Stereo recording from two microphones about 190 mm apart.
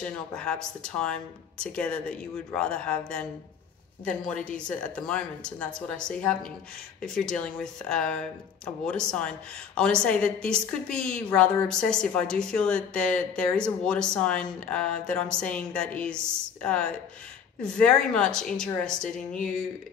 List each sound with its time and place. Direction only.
0.0 s a woman's voice: 5° left (ahead or behind)
19.1 s speech: 45° left (ahead or behind)